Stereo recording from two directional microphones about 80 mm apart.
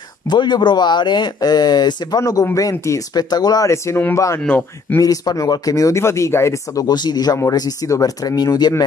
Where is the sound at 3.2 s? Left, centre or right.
Left.